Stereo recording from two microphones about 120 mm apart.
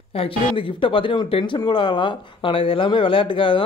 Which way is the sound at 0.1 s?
50° left (ahead or behind).